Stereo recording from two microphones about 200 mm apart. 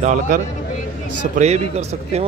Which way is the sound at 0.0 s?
40° right (ahead or behind).